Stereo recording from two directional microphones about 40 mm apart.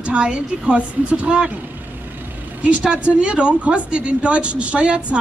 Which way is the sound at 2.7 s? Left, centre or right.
Right.